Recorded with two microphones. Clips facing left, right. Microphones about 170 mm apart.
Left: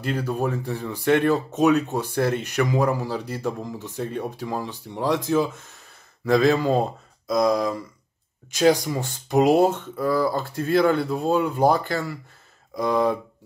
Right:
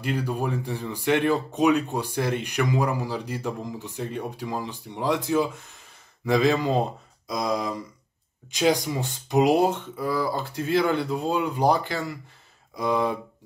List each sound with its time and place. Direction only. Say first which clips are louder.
0.0 s speech: left 2 dB; 15° right (ahead or behind)